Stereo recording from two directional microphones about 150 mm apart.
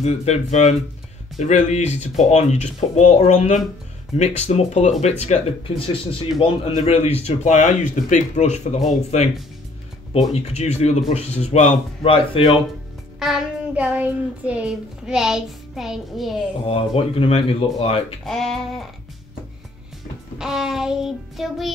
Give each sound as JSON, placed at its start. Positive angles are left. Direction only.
{"t": 0.0, "sound": "speech", "side_deg": 45}
{"t": 6.4, "sound": "speech", "side_deg": 40}
{"t": 10.3, "sound": "speech", "side_deg": 45}
{"t": 13.2, "sound": "child singing", "side_deg": -5}
{"t": 16.6, "sound": "speech", "side_deg": 35}
{"t": 18.2, "sound": "child singing", "side_deg": 0}
{"t": 20.3, "sound": "child singing", "side_deg": -5}